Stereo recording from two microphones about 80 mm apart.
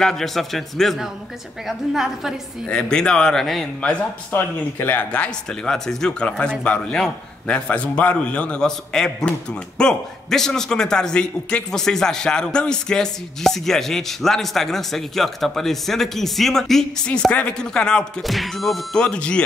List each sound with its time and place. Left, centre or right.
0.0 s a man's voice: centre
2.7 s a man's voice: centre
3.8 s a man's voice: left
18.2 s a man's voice: centre
18.9 s a man's voice: centre